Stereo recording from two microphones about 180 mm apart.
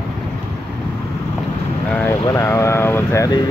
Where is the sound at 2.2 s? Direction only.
15° left (ahead or behind).